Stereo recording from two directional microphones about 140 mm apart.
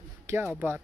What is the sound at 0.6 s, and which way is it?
Speech, 15° right (ahead or behind).